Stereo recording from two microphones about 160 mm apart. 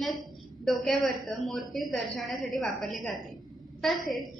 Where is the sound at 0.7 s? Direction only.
Centre (ahead or behind).